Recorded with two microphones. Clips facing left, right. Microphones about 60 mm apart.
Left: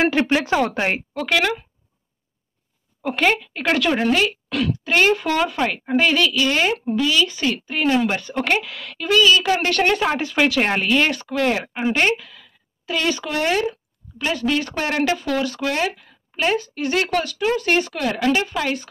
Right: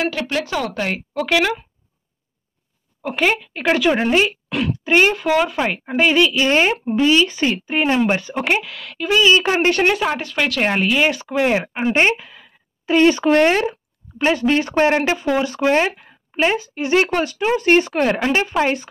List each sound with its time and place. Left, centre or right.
0.0 s speech: left
1.1 s speech: centre
3.0 s speech: centre
4.0 s a woman's voice: centre
6.4 s speech: right; by 8.6 s centre
8.6 s speech: centre
9.1 s speech: right
9.9 s speech: centre; by 13.7 s right
13.7 s speech: right